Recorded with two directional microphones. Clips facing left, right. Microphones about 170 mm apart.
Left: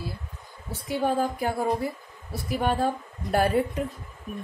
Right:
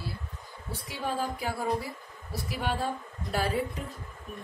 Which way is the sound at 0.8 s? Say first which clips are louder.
Left 8 dB; 50° left (ahead or behind).